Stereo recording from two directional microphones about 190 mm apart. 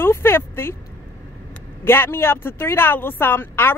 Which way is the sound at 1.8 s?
10° left (ahead or behind).